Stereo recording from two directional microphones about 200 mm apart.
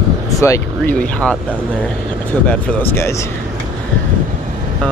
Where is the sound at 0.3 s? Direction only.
15° left (ahead or behind).